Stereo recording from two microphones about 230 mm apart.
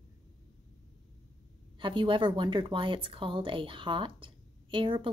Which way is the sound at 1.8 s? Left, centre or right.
Right.